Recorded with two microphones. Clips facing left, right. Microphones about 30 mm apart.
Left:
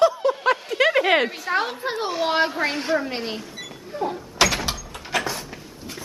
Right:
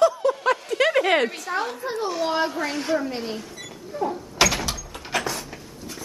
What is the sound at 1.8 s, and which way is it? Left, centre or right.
Speech, left.